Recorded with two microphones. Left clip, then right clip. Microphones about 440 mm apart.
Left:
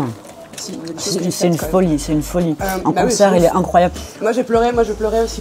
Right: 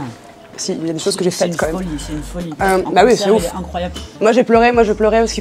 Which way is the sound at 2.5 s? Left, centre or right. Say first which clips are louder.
Right 10 dB; right.